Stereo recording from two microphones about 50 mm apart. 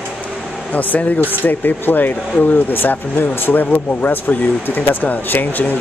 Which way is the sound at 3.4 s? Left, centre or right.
Left.